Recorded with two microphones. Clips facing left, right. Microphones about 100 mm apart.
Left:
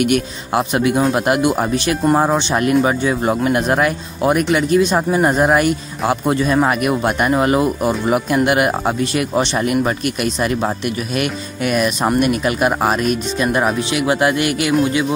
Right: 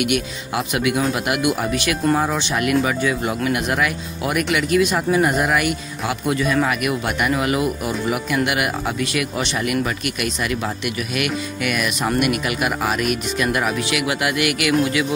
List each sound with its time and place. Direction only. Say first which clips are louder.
0.0 s speech: left 4 dB; 40° left (ahead or behind)